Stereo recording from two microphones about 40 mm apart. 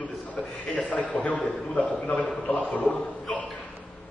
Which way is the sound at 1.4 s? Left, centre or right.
Centre.